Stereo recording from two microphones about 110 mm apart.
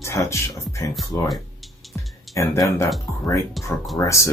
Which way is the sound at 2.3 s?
25° left (ahead or behind).